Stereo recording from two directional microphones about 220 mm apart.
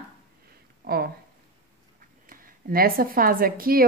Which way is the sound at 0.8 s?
45° right (ahead or behind).